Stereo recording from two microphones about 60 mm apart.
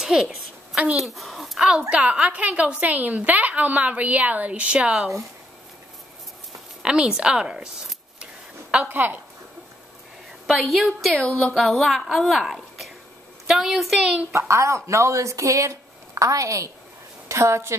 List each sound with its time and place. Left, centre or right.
0.0 s a woman's voice: centre
1.8 s a woman's voice: right
6.8 s speech: centre
8.8 s speech: right
10.4 s a woman's voice: centre
14.3 s speech: right
17.3 s a woman's voice: right